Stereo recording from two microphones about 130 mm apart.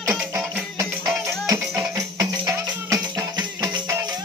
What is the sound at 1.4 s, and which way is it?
Music, 25° right (ahead or behind).